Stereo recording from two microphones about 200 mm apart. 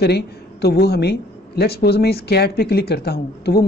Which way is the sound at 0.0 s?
55° left (ahead or behind).